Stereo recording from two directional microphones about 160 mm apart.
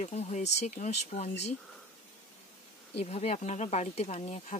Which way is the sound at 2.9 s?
40° left (ahead or behind).